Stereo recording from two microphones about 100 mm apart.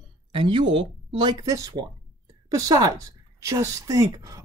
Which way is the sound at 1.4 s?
35° right (ahead or behind).